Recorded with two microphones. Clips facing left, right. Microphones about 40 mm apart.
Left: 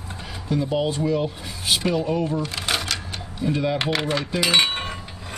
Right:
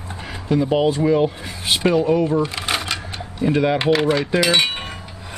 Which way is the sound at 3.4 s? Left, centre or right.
Right.